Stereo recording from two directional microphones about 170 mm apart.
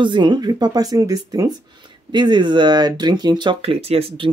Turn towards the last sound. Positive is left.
turn(degrees=-35)  # may be behind; listen again after turning